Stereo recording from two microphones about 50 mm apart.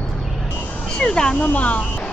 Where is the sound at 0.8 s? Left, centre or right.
Centre.